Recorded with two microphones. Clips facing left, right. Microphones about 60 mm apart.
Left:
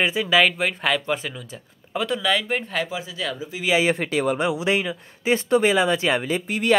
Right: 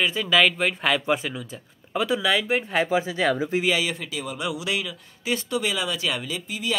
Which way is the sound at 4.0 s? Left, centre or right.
Left.